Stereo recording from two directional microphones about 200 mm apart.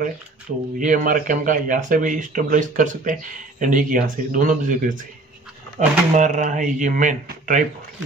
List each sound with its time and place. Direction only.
0.7 s speech: 40° right (ahead or behind)